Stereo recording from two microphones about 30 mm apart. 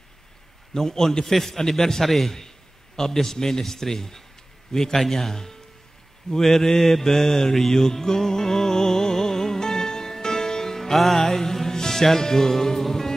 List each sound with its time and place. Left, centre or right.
0.7 s a man's voice: centre
6.3 s music: centre